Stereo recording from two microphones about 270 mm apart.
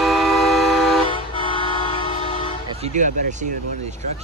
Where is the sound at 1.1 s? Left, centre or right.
Centre.